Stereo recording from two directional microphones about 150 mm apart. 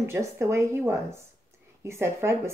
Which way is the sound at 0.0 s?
15° right (ahead or behind).